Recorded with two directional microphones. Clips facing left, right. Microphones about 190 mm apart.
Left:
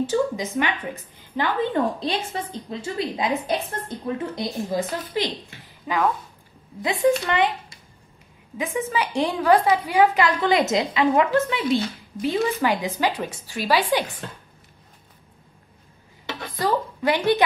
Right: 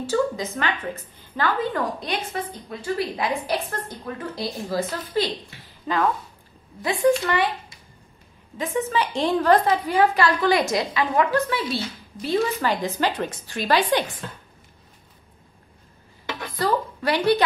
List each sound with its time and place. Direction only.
0.1 s a woman's voice: 15° left (ahead or behind)
8.5 s a woman's voice: 10° left (ahead or behind)
16.6 s a woman's voice: 20° left (ahead or behind)